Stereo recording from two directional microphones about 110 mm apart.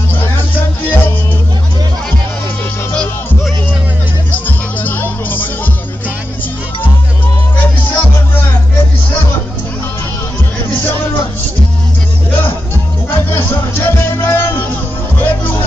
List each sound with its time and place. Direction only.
0.6 s music: 15° left (ahead or behind)
4.8 s music: 15° left (ahead or behind)
7.5 s music: 15° left (ahead or behind)
12.3 s music: 20° left (ahead or behind)